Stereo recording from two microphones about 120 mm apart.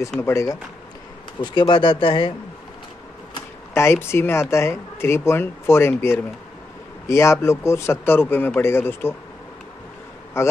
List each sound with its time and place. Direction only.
0.2 s speech: 25° left (ahead or behind)
1.4 s speech: 40° left (ahead or behind)
3.7 s speech: 20° left (ahead or behind)
10.4 s speech: 20° left (ahead or behind)